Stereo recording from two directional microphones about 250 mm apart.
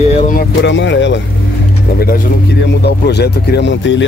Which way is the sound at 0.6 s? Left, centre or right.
Left.